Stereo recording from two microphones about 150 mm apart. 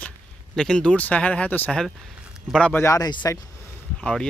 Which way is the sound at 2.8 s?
25° left (ahead or behind).